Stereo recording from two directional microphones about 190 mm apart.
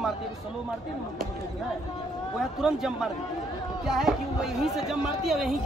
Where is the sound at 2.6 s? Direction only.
Centre (ahead or behind).